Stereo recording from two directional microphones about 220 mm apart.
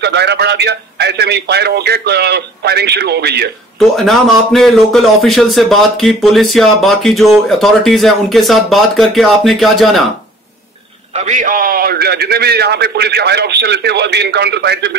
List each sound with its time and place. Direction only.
0.0 s a man's voice: 50° right (ahead or behind)
3.9 s speech: centre (ahead or behind)
11.1 s a man's voice: 35° right (ahead or behind); by 15.0 s 50° right (ahead or behind)